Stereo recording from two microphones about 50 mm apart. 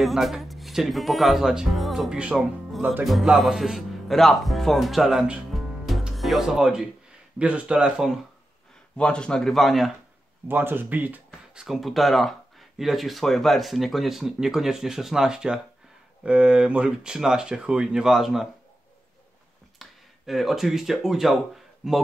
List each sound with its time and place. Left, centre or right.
0.0 s speech: centre
2.0 s speech: centre
3.0 s speech: centre
5.5 s music: centre
6.1 s speech: centre
7.3 s speech: right
7.7 s speech: centre
8.9 s a man's voice: centre
9.5 s speech: centre
10.5 s speech: right
11.6 s speech: centre
19.8 s speech: centre